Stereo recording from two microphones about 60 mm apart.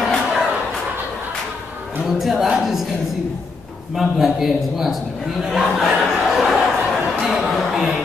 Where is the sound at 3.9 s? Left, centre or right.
Centre.